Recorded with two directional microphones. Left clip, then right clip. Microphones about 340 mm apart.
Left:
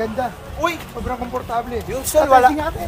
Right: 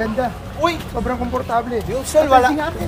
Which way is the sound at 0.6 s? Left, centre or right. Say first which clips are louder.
Right 2 dB; centre.